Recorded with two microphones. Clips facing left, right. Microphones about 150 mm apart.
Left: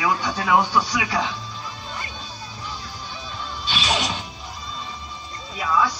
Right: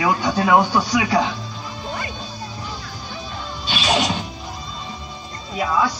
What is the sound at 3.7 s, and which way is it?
Smash, 40° right (ahead or behind).